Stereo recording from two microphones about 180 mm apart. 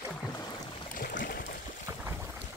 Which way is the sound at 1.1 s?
60° left (ahead or behind).